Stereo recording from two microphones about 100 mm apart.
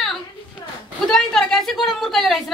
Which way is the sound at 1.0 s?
5° left (ahead or behind).